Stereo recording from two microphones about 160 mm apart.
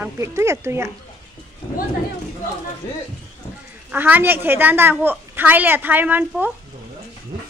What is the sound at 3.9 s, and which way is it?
A woman's voice, 10° right (ahead or behind).